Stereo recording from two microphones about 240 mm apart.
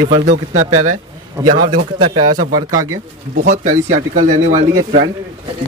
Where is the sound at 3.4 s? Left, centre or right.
Right.